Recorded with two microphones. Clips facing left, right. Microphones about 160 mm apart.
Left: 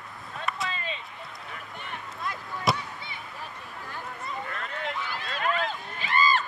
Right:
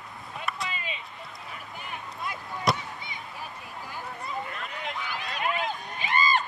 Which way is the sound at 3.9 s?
10° right (ahead or behind).